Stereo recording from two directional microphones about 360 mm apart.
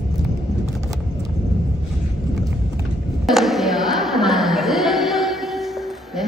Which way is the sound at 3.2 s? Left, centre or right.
Centre.